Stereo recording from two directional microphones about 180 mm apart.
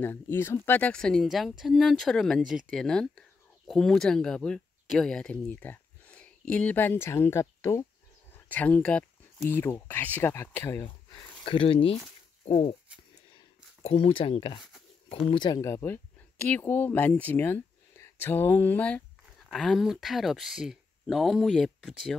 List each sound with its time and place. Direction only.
0.0 s speech: 10° left (ahead or behind)
11.4 s speech: 30° left (ahead or behind)
12.4 s a sound: 35° left (ahead or behind)
13.8 s speech: 30° left (ahead or behind); by 22.1 s centre (ahead or behind)